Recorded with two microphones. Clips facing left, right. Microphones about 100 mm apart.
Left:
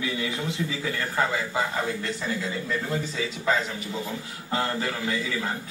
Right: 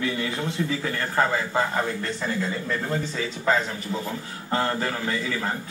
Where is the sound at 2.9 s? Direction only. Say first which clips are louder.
Right 1 dB; 35° right (ahead or behind).